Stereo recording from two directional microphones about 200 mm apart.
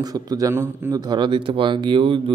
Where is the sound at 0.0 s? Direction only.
20° right (ahead or behind).